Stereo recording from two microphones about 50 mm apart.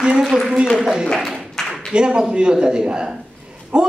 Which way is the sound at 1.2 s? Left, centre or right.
Centre.